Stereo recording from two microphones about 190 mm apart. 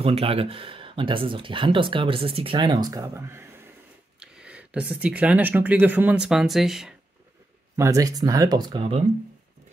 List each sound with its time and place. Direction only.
0.0 s speech: 30° right (ahead or behind); by 7.0 s centre (ahead or behind)
7.7 s speech: 15° right (ahead or behind)